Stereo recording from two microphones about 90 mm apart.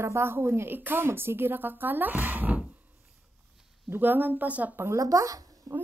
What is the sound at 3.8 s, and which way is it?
A woman's voice, 20° right (ahead or behind).